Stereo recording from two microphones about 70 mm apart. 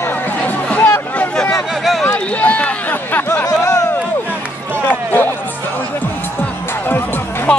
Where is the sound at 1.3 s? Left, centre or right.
Centre.